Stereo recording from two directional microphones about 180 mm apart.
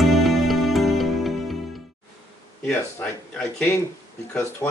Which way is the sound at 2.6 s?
10° left (ahead or behind).